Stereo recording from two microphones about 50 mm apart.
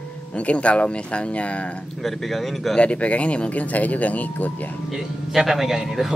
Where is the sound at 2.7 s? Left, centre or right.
Left.